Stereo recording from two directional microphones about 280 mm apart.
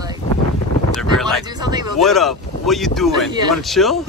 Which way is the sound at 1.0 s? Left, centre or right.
Centre.